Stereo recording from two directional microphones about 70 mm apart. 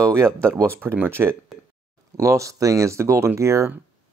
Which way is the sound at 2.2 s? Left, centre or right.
Right.